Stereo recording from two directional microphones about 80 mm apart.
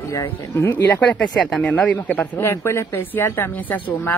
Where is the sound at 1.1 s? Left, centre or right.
Centre.